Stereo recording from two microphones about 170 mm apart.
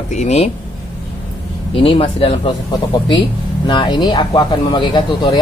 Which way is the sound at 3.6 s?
25° left (ahead or behind).